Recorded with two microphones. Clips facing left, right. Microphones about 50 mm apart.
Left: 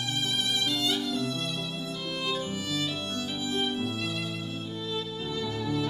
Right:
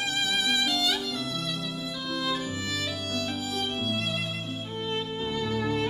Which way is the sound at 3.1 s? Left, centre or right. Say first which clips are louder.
Right 1 dB; right.